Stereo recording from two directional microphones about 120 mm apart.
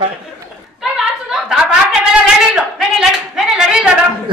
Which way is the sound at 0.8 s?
5° right (ahead or behind).